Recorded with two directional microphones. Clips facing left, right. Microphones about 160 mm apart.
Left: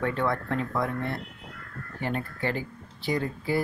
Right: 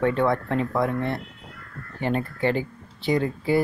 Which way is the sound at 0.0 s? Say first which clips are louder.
Right 6 dB; 20° right (ahead or behind).